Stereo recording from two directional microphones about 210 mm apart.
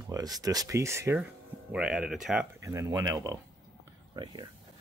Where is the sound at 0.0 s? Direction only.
15° right (ahead or behind).